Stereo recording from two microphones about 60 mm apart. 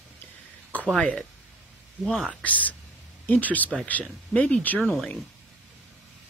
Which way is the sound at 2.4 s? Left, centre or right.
Left.